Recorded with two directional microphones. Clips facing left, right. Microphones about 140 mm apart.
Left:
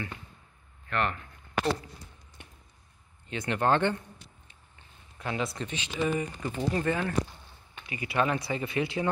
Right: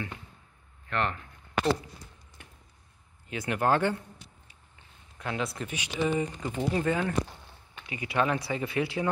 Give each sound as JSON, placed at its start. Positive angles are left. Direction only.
{"t": 0.8, "sound": "speech", "side_deg": -20}
{"t": 3.3, "sound": "speech", "side_deg": -5}
{"t": 5.2, "sound": "speech", "side_deg": 0}